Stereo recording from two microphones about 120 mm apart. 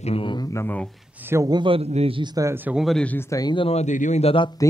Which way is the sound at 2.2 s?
30° right (ahead or behind).